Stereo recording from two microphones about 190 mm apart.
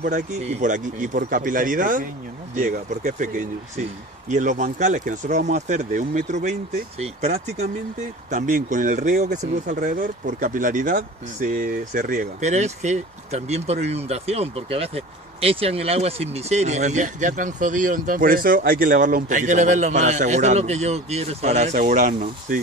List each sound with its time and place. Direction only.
0.0 s speech: 40° right (ahead or behind)
8.3 s speech: 45° right (ahead or behind)